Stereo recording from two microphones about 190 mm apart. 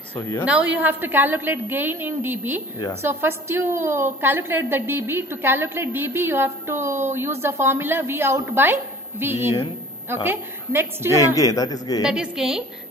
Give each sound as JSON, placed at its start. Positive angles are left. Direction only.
{"t": 0.1, "sound": "a woman's voice", "side_deg": 15}
{"t": 0.5, "sound": "a woman's voice", "side_deg": -10}
{"t": 11.1, "sound": "a woman's voice", "side_deg": 15}
{"t": 12.0, "sound": "a woman's voice", "side_deg": -5}